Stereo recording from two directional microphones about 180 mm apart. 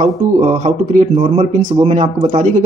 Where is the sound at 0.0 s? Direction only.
40° right (ahead or behind).